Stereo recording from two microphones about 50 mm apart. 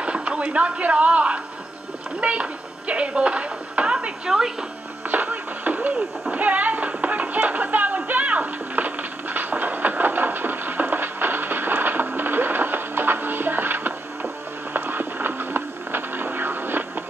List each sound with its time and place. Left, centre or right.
0.0 s speech: right
2.1 s music: right
4.3 s speech: centre
5.1 s music: right